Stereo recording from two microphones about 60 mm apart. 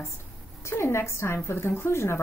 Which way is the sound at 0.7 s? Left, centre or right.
Left.